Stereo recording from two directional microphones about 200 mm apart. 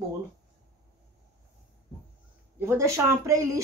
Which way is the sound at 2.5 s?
15° right (ahead or behind).